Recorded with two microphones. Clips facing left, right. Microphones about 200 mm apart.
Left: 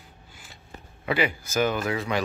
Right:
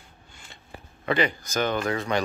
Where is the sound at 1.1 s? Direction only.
5° left (ahead or behind).